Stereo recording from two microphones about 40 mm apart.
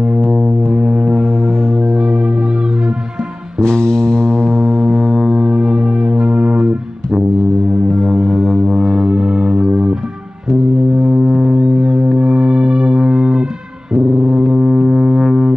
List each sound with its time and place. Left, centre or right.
0.3 s foghorn: centre
1.8 s music: centre
3.6 s music: centre
4.6 s foghorn: centre
5.3 s music: centre
7.9 s music: centre
8.6 s music: centre
11.0 s foghorn: centre
12.2 s music: right
13.9 s music: centre